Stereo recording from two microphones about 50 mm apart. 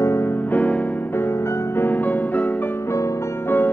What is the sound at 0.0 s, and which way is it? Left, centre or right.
Music, left.